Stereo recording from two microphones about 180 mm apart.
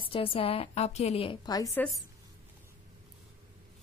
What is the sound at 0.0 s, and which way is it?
A woman's voice, 30° left (ahead or behind).